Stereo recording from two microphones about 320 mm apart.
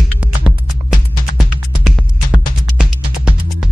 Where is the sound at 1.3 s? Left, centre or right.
Centre.